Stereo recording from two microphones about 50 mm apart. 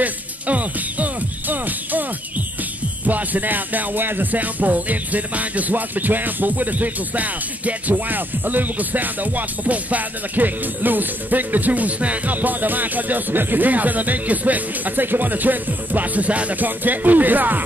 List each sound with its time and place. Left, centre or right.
0.0 s music: right
3.1 s music: right